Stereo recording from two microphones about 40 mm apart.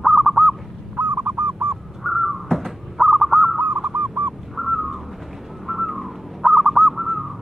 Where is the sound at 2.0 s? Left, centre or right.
Centre.